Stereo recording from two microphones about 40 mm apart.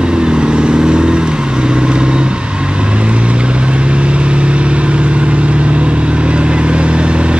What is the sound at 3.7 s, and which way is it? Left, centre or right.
Vehicle, right.